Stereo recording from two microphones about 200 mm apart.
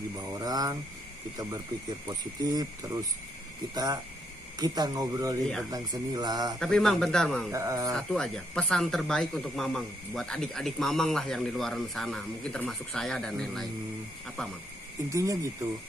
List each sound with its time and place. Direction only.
0.3 s speech: 20° right (ahead or behind)
6.6 s speech: centre (ahead or behind)
7.5 s speech: 15° right (ahead or behind)
7.9 s speech: 5° left (ahead or behind)
15.0 s speech: 15° right (ahead or behind)